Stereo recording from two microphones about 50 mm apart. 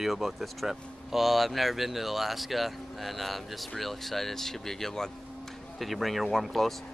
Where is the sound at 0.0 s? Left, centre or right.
Centre.